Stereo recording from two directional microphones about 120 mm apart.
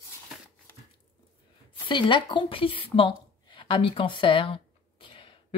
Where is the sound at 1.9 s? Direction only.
45° left (ahead or behind).